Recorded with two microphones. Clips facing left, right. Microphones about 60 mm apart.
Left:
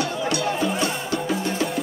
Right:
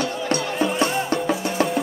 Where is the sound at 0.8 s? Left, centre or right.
Right.